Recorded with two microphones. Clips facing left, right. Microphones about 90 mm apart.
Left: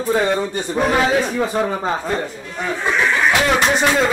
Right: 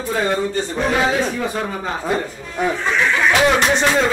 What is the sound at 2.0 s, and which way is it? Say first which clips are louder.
Speech: right 1 dB; 5° right (ahead or behind).